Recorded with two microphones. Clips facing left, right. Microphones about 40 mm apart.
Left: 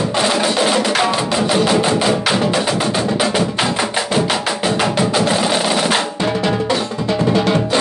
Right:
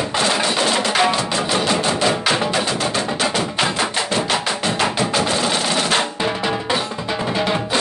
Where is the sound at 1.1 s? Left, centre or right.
Centre.